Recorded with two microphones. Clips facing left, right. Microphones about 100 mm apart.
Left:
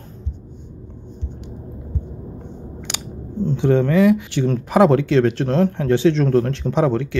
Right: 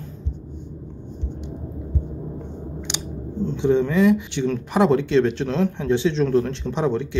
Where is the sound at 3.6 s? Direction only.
55° left (ahead or behind).